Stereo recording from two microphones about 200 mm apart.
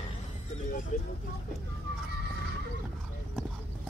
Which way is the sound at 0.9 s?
40° left (ahead or behind).